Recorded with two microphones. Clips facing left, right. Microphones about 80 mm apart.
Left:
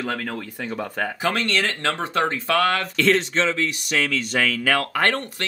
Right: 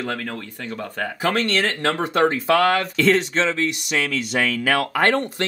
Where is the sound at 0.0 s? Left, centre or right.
Centre.